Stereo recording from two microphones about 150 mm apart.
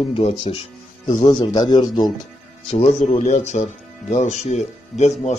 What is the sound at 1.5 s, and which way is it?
Speech, 30° left (ahead or behind).